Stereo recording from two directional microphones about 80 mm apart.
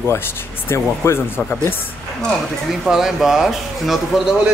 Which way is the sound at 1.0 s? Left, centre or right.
Left.